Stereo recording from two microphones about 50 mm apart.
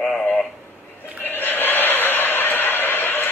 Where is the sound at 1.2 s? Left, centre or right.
Left.